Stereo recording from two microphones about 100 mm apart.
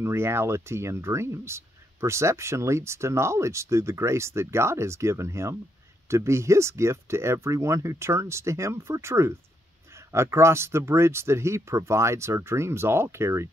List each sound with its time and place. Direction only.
0.0 s speech: 25° right (ahead or behind)